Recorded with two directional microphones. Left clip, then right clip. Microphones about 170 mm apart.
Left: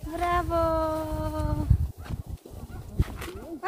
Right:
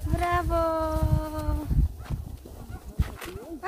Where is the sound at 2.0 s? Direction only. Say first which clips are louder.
Even; 30° right (ahead or behind).